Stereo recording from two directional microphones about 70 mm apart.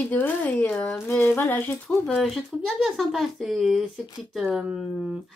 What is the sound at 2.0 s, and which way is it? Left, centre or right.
Speech, centre.